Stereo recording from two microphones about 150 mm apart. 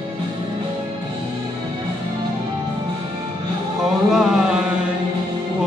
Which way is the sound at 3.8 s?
5° right (ahead or behind).